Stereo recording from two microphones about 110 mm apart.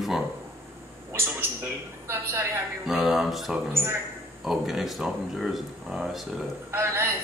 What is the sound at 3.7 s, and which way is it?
Speech, 20° right (ahead or behind).